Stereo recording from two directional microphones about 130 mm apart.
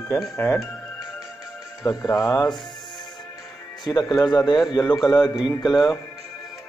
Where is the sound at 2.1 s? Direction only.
25° left (ahead or behind).